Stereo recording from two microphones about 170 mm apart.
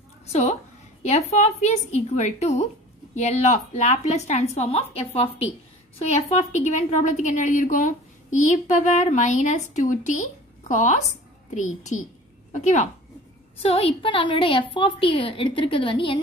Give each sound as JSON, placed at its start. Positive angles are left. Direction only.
{"t": 0.3, "sound": "a woman's voice", "side_deg": 40}
{"t": 13.6, "sound": "a woman's voice", "side_deg": 35}